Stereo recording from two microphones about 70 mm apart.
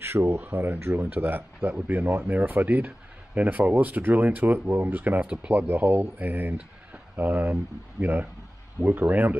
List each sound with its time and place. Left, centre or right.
0.0 s speech: right
0.4 s speech: right
5.2 s speech: centre
5.5 s speech: right